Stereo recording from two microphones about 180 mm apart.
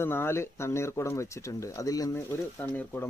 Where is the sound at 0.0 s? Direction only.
15° left (ahead or behind).